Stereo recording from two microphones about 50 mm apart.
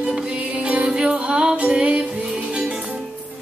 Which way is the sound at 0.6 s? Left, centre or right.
Centre.